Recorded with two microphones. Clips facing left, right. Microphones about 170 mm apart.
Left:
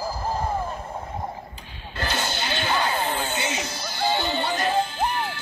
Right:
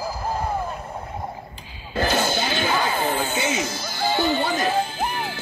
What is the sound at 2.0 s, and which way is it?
Music, 50° right (ahead or behind).